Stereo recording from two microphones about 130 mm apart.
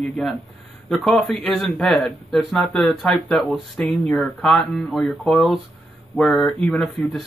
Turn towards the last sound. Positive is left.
turn(degrees=0)  # may be behind; listen again after turning